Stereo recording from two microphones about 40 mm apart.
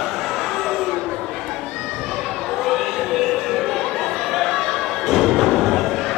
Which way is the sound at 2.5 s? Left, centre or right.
Centre.